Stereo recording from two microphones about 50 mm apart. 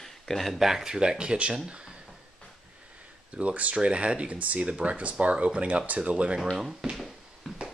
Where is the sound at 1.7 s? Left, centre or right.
Centre.